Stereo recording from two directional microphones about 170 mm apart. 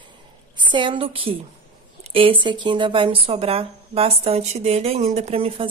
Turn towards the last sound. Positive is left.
turn(degrees=-35)  # may be behind; listen again after turning